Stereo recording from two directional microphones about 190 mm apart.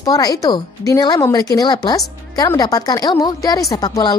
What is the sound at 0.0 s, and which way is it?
A woman's voice, 20° left (ahead or behind).